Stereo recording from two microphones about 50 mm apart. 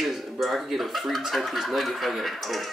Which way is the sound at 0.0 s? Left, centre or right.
Centre.